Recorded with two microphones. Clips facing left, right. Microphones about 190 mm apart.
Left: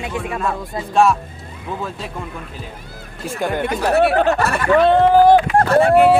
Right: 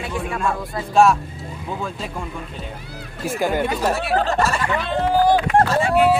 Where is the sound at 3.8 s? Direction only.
65° left (ahead or behind).